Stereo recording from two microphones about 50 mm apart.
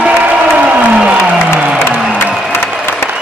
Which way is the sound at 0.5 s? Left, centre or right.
Right.